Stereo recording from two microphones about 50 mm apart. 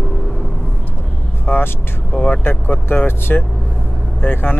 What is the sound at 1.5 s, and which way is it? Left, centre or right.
Vehicle, left.